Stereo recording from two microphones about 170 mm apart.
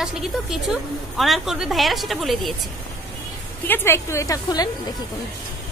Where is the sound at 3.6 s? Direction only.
15° left (ahead or behind).